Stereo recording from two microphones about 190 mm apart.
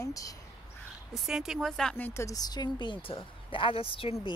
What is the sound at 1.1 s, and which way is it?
A woman's voice, 5° right (ahead or behind).